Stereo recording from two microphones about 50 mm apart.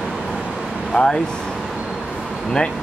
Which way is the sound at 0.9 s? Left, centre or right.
Centre.